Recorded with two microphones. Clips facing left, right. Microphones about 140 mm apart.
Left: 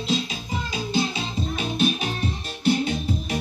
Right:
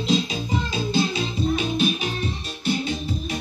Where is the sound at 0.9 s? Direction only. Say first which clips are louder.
Right 2 dB; 20° left (ahead or behind).